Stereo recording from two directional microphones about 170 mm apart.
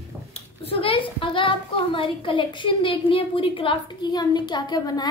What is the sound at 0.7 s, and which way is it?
A woman's voice, 30° left (ahead or behind).